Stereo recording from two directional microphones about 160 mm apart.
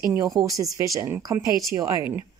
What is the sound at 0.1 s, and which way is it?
A woman's voice, 20° right (ahead or behind).